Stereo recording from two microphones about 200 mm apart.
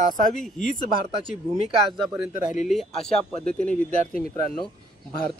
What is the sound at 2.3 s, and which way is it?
Speech, 40° left (ahead or behind).